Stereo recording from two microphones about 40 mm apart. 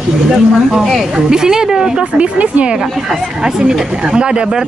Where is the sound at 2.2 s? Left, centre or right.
Right.